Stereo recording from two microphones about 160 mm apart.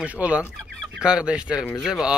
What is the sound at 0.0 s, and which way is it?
Speech, 10° right (ahead or behind).